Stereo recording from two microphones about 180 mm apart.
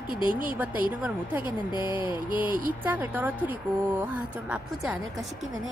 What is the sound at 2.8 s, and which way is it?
Speech, 10° right (ahead or behind).